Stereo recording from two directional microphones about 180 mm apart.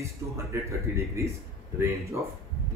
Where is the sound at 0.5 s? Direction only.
15° right (ahead or behind).